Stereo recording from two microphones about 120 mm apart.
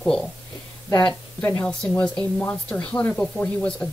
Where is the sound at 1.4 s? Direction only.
20° left (ahead or behind).